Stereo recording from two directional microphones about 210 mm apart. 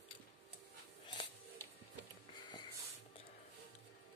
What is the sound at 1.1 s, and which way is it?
Music, 20° left (ahead or behind).